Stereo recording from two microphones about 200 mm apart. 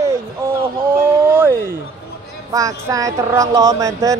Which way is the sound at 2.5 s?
15° right (ahead or behind).